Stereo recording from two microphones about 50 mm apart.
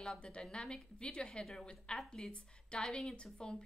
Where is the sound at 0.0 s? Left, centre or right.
Centre.